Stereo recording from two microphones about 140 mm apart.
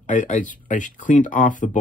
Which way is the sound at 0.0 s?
65° left (ahead or behind).